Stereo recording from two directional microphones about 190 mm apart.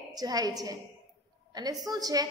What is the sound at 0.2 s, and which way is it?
A woman's voice, 20° right (ahead or behind).